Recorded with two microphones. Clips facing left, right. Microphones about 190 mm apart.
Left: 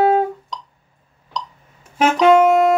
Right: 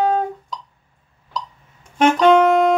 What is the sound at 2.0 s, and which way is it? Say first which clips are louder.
Music: even; 5° left (ahead or behind).